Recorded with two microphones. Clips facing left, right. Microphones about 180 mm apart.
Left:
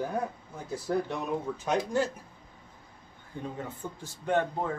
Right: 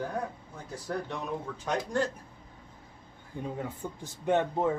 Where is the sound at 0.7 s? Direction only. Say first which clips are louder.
Left 5 dB; 5° left (ahead or behind).